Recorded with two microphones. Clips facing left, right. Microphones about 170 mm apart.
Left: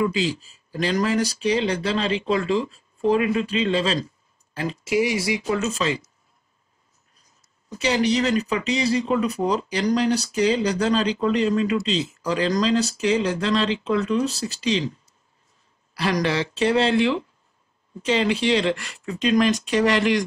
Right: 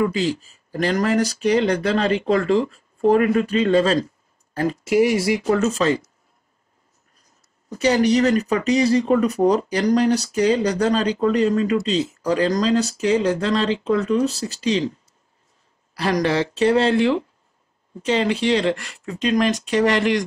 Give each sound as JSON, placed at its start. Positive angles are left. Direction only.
{"t": 0.0, "sound": "speech", "side_deg": -50}
{"t": 7.7, "sound": "speech", "side_deg": -45}
{"t": 16.0, "sound": "speech", "side_deg": -45}